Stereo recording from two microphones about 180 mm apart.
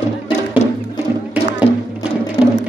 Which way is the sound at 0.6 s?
40° left (ahead or behind).